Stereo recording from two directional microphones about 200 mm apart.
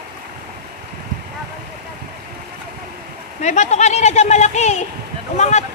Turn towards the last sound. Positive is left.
turn(degrees=35)  # may be behind; listen again after turning